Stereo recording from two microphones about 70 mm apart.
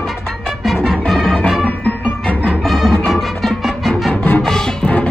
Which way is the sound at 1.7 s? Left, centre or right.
Centre.